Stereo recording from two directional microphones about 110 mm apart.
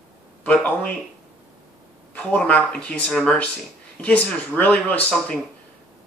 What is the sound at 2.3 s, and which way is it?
Speech, 10° left (ahead or behind).